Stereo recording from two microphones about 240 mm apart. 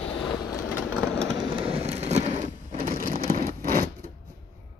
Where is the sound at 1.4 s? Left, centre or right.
Right.